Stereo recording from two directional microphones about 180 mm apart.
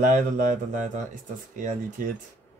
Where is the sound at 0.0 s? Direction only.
45° right (ahead or behind).